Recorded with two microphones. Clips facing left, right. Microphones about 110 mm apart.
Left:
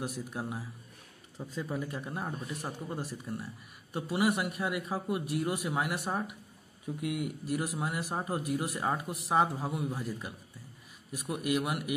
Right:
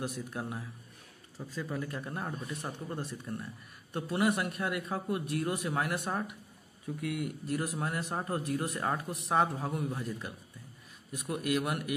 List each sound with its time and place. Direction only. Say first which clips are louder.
0.3 s a man's voice: left 1 dB; 20° left (ahead or behind)